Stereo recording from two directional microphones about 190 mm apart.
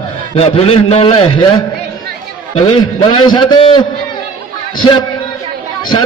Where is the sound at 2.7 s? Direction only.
25° left (ahead or behind).